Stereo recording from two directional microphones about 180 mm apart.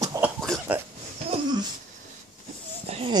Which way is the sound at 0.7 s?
10° right (ahead or behind).